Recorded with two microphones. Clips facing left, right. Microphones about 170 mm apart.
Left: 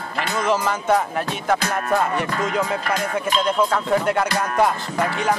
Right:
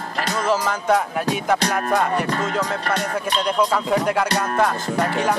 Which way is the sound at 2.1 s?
40° right (ahead or behind).